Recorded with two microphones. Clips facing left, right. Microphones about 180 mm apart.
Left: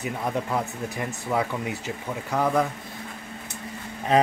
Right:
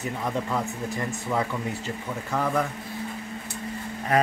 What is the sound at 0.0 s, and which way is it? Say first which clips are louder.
Speech: left 1 dB; 10° left (ahead or behind).